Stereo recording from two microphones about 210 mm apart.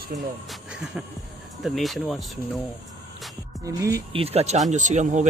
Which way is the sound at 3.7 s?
15° right (ahead or behind).